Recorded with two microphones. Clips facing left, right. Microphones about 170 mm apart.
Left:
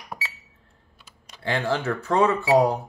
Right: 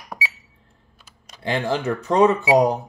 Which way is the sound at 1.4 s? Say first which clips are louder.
Right 2 dB; 20° right (ahead or behind).